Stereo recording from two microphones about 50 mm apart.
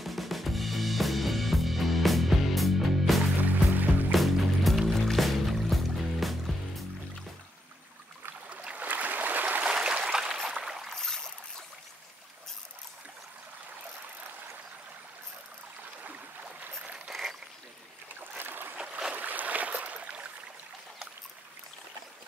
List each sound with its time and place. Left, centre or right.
0.0 s music: centre
3.4 s music: right
4.1 s music: centre
8.6 s boat: right
9.7 s a sound: centre
10.2 s a sound: centre
10.6 s boat: centre
10.9 s boat: centre
16.8 s boat: right
17.1 s a sound: centre
18.4 s boat: right